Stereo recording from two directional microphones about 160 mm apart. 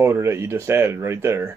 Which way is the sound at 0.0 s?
15° right (ahead or behind).